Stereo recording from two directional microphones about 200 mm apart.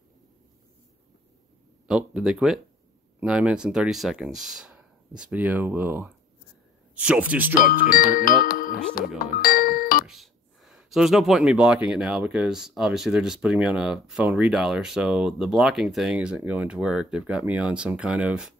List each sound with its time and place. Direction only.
1.9 s speech: 5° right (ahead or behind)
7.5 s speech: 45° left (ahead or behind)
9.2 s music: 45° left (ahead or behind)
10.0 s speech: centre (ahead or behind)